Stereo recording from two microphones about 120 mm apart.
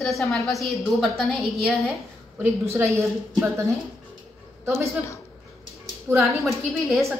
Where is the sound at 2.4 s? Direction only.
25° right (ahead or behind).